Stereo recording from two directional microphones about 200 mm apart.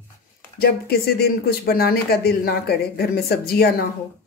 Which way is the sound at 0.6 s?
50° left (ahead or behind).